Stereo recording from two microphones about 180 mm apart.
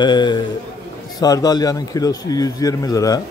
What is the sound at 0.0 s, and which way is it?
A man's voice, 25° left (ahead or behind).